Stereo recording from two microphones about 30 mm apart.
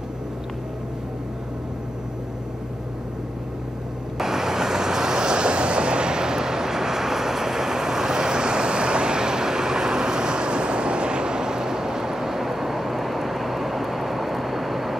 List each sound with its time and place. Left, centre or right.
4.2 s vehicle: centre